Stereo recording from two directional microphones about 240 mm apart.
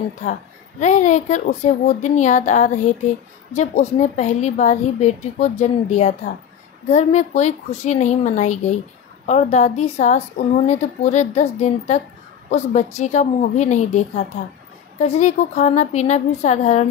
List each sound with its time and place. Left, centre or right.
0.2 s a woman's voice: left